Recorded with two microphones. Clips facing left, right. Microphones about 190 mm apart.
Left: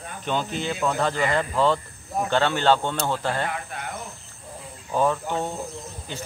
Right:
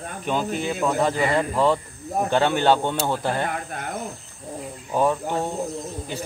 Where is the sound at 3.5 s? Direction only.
45° right (ahead or behind).